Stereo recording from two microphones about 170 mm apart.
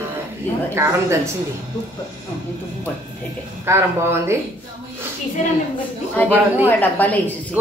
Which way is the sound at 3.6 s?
15° right (ahead or behind).